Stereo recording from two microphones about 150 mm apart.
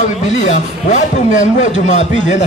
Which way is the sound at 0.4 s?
55° left (ahead or behind).